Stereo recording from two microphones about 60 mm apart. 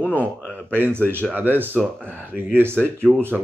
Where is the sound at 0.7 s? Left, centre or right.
Right.